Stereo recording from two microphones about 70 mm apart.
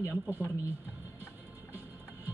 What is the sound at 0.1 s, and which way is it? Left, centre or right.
Speech, right.